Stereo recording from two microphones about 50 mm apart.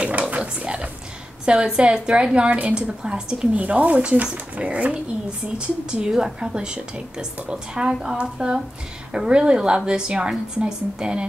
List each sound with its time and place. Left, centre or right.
0.4 s a woman's voice: right